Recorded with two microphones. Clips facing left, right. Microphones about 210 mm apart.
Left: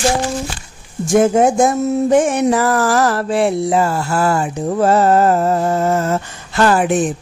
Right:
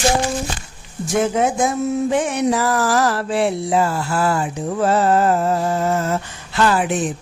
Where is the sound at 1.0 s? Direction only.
50° left (ahead or behind).